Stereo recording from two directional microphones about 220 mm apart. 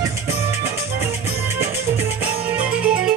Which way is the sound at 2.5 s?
5° right (ahead or behind).